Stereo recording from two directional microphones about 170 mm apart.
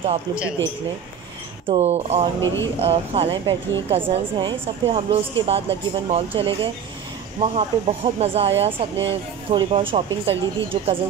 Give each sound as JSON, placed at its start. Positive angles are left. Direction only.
{"t": 1.7, "sound": "a woman's voice", "side_deg": -40}
{"t": 2.4, "sound": "speech", "side_deg": 15}
{"t": 2.8, "sound": "a woman's voice", "side_deg": -35}